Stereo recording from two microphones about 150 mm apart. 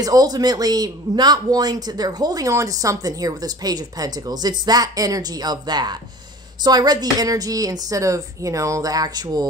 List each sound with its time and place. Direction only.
0.0 s a man's voice: 25° right (ahead or behind)